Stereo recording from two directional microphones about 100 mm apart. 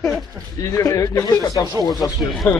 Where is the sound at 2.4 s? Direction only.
20° left (ahead or behind).